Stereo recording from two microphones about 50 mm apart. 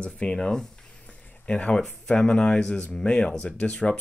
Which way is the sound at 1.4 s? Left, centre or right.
Left.